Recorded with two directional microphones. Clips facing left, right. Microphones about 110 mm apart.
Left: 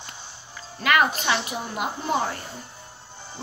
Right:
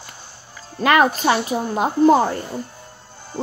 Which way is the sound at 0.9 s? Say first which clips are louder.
Right 6 dB; 35° right (ahead or behind).